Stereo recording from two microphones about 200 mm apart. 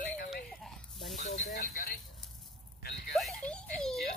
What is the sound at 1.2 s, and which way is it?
Sizzle, 40° left (ahead or behind).